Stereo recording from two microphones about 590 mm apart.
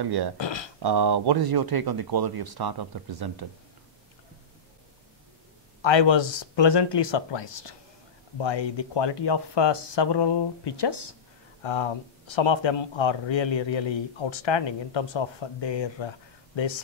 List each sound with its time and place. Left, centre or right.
0.0 s speech: right
0.4 s a sound: left
0.8 s speech: right
5.8 s speech: left